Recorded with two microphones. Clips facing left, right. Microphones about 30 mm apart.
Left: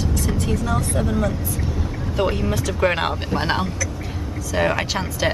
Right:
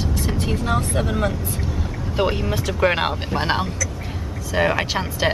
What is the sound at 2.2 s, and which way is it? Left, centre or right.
Speech, centre.